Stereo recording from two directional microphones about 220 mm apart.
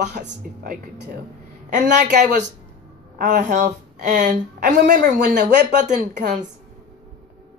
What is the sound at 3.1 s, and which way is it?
A woman's voice, 35° right (ahead or behind).